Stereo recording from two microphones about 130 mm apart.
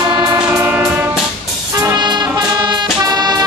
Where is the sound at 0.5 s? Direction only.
15° right (ahead or behind).